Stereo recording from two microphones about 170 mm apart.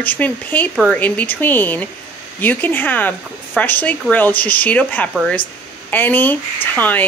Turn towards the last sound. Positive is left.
turn(degrees=10)  # may be behind; listen again after turning